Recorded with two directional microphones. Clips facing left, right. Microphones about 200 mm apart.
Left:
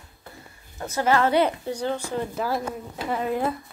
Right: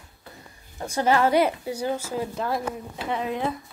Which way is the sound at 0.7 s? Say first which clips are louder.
Even; 15° right (ahead or behind).